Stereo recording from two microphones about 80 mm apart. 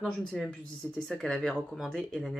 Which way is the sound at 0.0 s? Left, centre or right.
Centre.